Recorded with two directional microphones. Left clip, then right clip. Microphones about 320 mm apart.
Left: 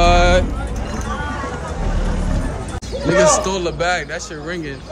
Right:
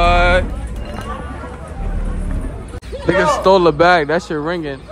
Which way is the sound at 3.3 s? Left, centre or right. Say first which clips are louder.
Right 6 dB; centre.